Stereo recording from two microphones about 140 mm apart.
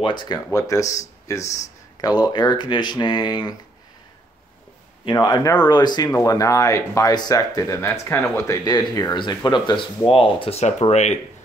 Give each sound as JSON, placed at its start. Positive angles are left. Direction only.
{"t": 0.0, "sound": "speech", "side_deg": 30}
{"t": 5.0, "sound": "speech", "side_deg": 30}